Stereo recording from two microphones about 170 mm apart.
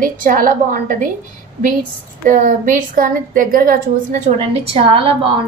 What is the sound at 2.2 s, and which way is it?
A woman's voice, 50° right (ahead or behind).